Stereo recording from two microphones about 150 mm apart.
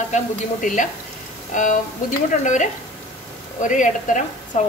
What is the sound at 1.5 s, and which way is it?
Speech, 55° left (ahead or behind).